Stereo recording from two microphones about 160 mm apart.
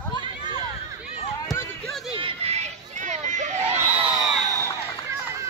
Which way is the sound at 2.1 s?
35° right (ahead or behind).